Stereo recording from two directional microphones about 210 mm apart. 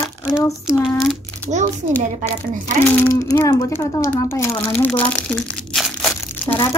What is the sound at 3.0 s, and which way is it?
Speech, 15° left (ahead or behind).